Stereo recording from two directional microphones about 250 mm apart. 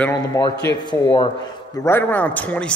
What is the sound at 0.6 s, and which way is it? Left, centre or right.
A man's voice, centre.